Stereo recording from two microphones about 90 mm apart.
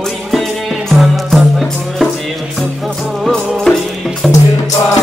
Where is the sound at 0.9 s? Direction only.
Centre (ahead or behind).